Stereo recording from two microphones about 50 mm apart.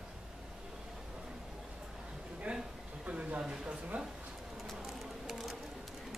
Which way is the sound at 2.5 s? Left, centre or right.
Right.